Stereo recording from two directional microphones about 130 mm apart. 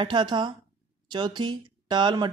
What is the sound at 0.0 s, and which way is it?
Speech, 35° right (ahead or behind).